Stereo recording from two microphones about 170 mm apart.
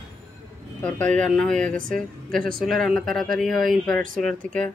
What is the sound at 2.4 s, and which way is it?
Speech, 60° right (ahead or behind).